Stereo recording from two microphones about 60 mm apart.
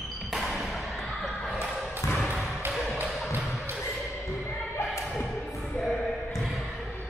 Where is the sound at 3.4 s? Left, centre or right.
Centre.